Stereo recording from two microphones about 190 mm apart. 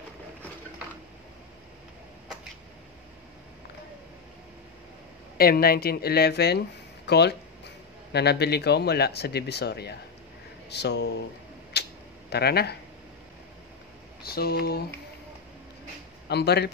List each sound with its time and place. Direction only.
5.4 s speech: 55° left (ahead or behind)
11.7 s a sound: 60° left (ahead or behind)
12.3 s speech: 60° left (ahead or behind)
14.2 s speech: 55° left (ahead or behind)
16.3 s speech: 60° left (ahead or behind)